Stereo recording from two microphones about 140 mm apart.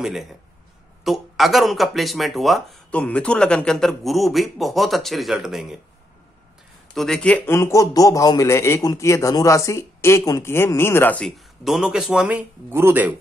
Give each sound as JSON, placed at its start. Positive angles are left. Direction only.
{"t": 0.0, "sound": "speech", "side_deg": 0}
{"t": 7.0, "sound": "a man's voice", "side_deg": 5}